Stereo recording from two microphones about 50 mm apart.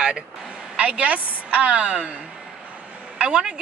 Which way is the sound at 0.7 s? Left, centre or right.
Right.